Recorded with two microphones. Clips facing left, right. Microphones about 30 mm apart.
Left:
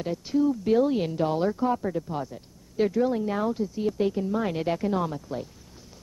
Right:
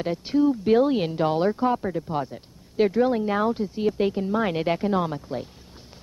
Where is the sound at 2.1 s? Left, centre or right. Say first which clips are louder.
Right 4 dB; right.